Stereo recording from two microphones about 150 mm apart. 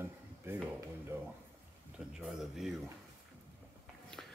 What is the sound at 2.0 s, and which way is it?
Speech, 5° right (ahead or behind).